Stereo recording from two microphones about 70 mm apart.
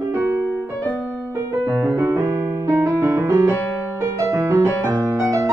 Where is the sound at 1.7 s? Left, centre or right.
Right.